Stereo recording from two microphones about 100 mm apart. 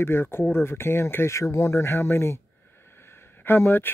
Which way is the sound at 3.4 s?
25° left (ahead or behind).